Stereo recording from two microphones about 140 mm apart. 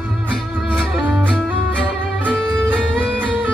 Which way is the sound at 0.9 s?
10° right (ahead or behind).